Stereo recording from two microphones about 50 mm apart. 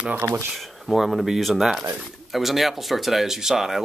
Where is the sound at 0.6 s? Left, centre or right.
Centre.